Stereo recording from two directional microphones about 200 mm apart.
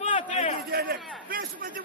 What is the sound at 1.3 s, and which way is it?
Speech, 45° right (ahead or behind).